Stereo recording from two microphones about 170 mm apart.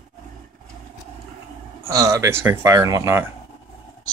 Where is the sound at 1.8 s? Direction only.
20° right (ahead or behind).